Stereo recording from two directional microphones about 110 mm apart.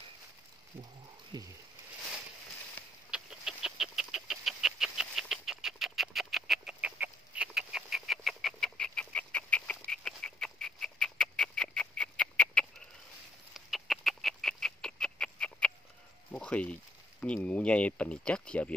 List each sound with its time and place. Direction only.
1.3 s speech: 40° right (ahead or behind)
3.1 s bird: 5° right (ahead or behind); by 9.8 s 10° left (ahead or behind)
9.8 s a sound: 5° left (ahead or behind)
13.5 s bird: centre (ahead or behind)
16.3 s a sound: 10° left (ahead or behind)
17.2 s speech: 10° left (ahead or behind)